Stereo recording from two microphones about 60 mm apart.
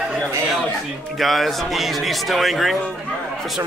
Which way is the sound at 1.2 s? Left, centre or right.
Centre.